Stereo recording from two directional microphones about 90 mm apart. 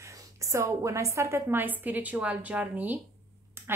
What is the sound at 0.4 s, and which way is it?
A woman's voice, 35° right (ahead or behind).